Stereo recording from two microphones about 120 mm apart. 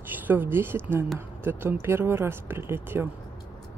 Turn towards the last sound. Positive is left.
turn(degrees=-20)  # may be behind; listen again after turning